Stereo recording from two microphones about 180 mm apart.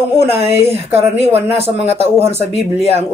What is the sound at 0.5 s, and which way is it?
Speech, 35° right (ahead or behind).